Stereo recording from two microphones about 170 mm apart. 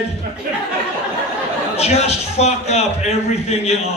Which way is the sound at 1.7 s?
40° left (ahead or behind).